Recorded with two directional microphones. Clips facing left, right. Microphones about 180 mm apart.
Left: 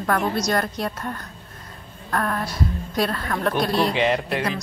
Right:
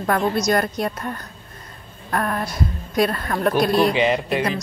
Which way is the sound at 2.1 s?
10° right (ahead or behind).